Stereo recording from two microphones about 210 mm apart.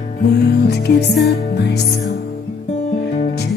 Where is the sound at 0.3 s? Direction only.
50° left (ahead or behind).